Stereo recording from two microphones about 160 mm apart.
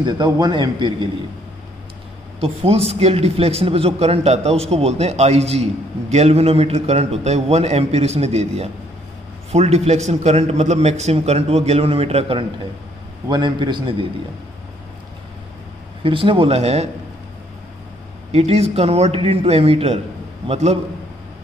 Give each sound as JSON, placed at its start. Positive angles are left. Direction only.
{"t": 0.0, "sound": "a man's voice", "side_deg": -30}
{"t": 2.4, "sound": "a man's voice", "side_deg": -40}
{"t": 16.0, "sound": "speech", "side_deg": -30}
{"t": 18.3, "sound": "a man's voice", "side_deg": -40}